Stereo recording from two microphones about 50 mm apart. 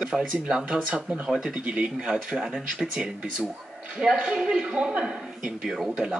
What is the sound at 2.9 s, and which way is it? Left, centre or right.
Speech, right.